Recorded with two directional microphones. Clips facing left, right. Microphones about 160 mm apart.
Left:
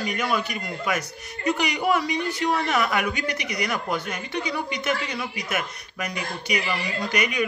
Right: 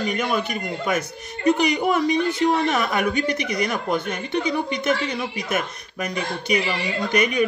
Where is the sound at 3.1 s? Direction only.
50° right (ahead or behind).